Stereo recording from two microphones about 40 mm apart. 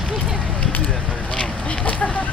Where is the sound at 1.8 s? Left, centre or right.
Left.